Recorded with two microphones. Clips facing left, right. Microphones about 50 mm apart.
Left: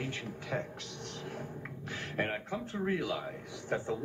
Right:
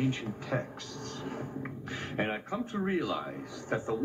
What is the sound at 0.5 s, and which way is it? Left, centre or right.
Speech, centre.